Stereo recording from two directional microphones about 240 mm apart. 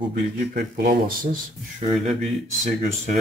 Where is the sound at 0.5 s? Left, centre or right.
Right.